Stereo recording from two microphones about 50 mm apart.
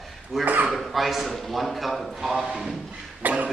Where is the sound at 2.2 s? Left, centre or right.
Centre.